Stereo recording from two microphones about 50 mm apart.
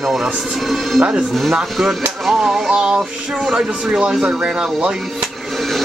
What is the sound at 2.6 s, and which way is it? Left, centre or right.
Speech, right.